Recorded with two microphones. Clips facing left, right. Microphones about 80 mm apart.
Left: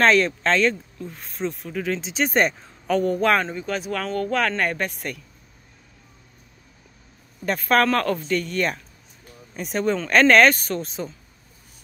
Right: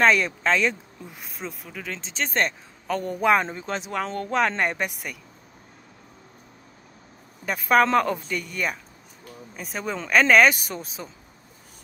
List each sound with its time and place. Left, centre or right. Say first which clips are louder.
0.0 s speech: left 2 dB; centre
3.2 s speech: right 4 dB; centre
3.4 s speech: left 3 dB; right; by 5.2 s centre
7.4 s speech: even; centre